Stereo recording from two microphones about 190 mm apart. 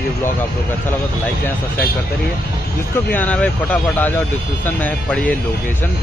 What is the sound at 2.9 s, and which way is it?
Speech, 10° left (ahead or behind).